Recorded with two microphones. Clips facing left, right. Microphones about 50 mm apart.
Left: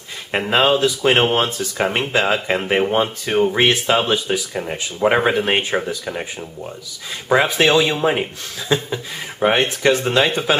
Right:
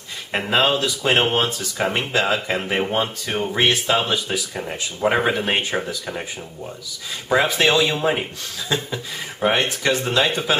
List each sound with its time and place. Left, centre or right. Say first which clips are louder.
0.5 s speech: left 3 dB; centre
3.9 s speech: left 3 dB; left
4.6 s speech: left 4 dB; centre
5.5 s speech: left 3 dB; left
5.8 s speech: left 3 dB; centre